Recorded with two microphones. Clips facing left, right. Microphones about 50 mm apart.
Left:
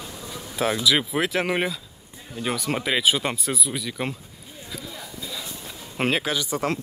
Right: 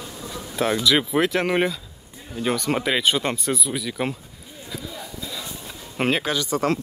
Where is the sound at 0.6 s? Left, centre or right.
Centre.